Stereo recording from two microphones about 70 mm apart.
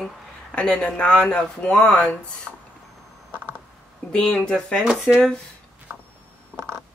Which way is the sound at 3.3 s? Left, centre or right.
Right.